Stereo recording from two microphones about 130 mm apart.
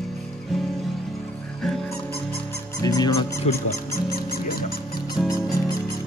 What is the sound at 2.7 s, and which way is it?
Music, 30° left (ahead or behind).